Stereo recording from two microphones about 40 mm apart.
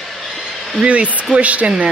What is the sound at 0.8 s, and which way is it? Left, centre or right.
Speech, right.